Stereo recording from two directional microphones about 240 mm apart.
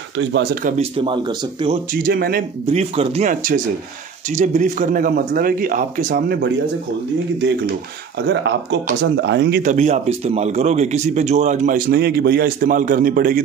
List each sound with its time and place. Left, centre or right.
0.2 s a man's voice: right
0.7 s speech: right
2.0 s a man's voice: right
2.6 s a man's voice: right
8.3 s speech: right
9.6 s a man's voice: right